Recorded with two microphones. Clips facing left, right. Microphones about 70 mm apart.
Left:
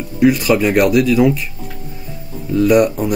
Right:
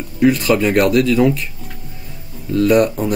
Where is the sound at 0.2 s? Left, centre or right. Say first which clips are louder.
Left 1 dB; centre.